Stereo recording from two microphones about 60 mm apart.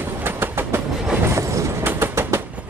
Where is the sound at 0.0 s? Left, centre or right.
Right.